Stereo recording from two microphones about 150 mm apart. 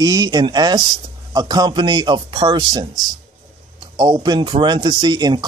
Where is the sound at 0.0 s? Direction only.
25° right (ahead or behind).